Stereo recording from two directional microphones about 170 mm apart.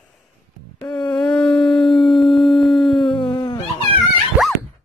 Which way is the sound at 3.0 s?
30° left (ahead or behind).